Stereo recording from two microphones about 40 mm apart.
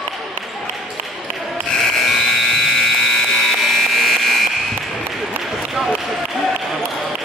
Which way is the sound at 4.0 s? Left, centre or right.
Centre.